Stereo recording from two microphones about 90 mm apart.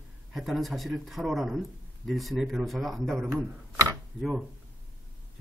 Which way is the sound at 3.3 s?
35° right (ahead or behind).